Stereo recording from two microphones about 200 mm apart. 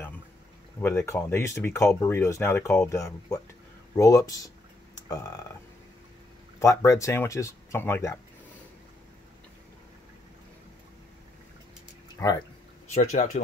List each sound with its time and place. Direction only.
0.7 s speech: 10° left (ahead or behind)
6.6 s speech: 15° left (ahead or behind)
12.2 s speech: 10° left (ahead or behind)
12.9 s speech: 35° left (ahead or behind)